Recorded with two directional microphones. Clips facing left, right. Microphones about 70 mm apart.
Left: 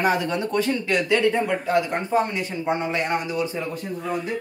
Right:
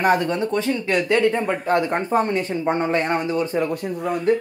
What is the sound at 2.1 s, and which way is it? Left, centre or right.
Speech, right.